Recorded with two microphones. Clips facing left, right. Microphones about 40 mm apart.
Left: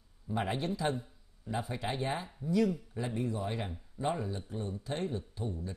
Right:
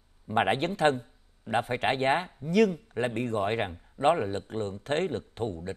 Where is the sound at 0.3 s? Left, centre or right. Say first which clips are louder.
Right 8 dB; right.